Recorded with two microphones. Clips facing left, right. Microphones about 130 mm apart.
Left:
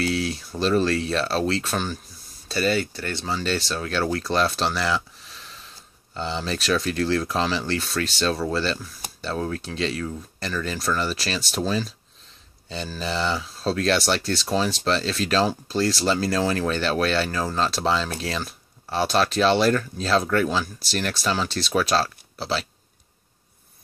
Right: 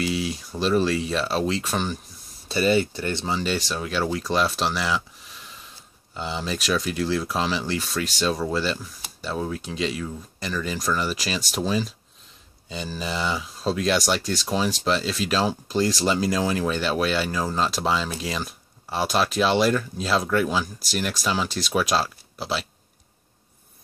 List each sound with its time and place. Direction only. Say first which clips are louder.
0.0 s a sound: left 1 dB; 10° right (ahead or behind)
0.6 s speech: even; 10° right (ahead or behind)
6.1 s speech: left 1 dB; 10° right (ahead or behind)